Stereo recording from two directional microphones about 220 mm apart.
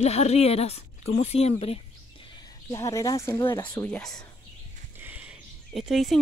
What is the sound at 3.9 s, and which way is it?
Speech, centre (ahead or behind).